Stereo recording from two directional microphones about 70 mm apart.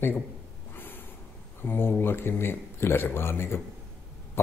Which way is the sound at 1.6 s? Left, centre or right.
Left.